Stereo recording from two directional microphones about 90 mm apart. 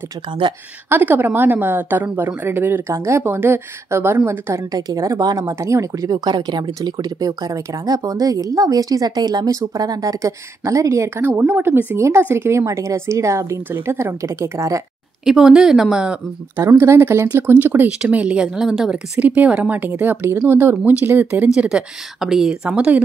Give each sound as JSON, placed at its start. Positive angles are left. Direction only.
{"t": 0.8, "sound": "a woman's voice", "side_deg": -20}
{"t": 4.7, "sound": "speech", "side_deg": -45}
{"t": 6.1, "sound": "speech", "side_deg": -55}
{"t": 15.2, "sound": "a woman's voice", "side_deg": -5}
{"t": 16.5, "sound": "a woman's voice", "side_deg": -35}
{"t": 18.0, "sound": "a woman's voice", "side_deg": -10}
{"t": 19.1, "sound": "a woman's voice", "side_deg": -15}
{"t": 21.5, "sound": "a woman's voice", "side_deg": -10}